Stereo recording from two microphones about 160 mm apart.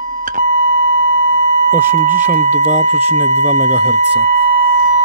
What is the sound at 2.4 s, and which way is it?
Speech, 50° right (ahead or behind).